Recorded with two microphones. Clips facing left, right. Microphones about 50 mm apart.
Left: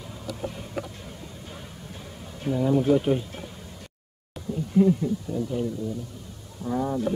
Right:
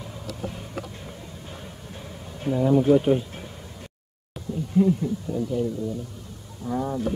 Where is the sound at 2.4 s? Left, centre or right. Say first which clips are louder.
Right 3 dB; centre.